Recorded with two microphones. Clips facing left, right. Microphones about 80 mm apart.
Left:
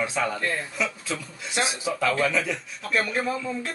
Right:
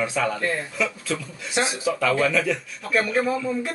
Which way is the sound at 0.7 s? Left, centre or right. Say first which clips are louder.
Right 3 dB; centre.